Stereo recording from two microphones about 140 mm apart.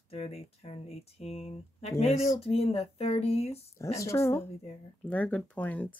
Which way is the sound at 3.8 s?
20° left (ahead or behind).